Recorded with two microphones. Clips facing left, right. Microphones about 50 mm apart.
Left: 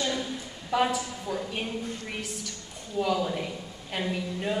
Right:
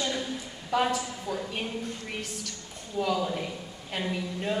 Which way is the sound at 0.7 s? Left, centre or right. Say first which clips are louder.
Left 1 dB; centre.